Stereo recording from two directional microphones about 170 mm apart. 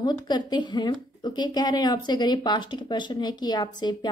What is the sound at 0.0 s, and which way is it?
A woman's voice, 25° left (ahead or behind).